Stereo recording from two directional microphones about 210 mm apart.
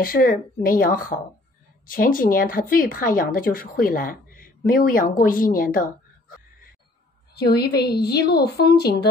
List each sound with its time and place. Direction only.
0.0 s a woman's voice: 45° left (ahead or behind)
7.3 s a woman's voice: 50° left (ahead or behind)